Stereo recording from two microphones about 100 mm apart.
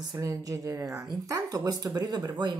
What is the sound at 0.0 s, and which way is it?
A woman's voice, 40° right (ahead or behind).